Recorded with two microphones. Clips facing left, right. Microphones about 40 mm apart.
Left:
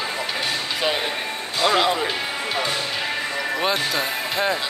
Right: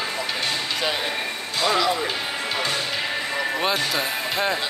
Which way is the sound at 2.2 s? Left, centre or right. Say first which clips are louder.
Left 1 dB; centre.